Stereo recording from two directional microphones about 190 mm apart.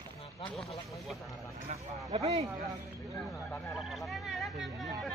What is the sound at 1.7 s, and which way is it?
Speech, 40° right (ahead or behind).